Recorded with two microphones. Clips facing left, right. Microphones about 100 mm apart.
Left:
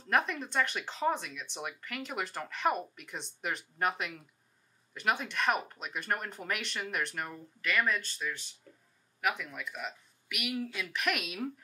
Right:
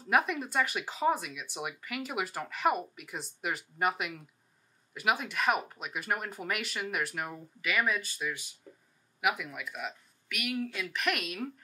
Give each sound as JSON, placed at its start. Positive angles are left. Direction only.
{"t": 0.0, "sound": "speech", "side_deg": -5}